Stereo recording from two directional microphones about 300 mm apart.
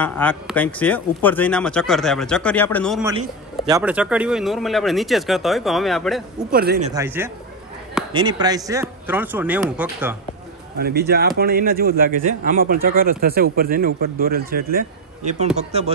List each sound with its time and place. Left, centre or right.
0.0 s speech: centre
3.2 s speech: centre
6.5 s speech: right
6.9 s speech: centre
10.8 s speech: right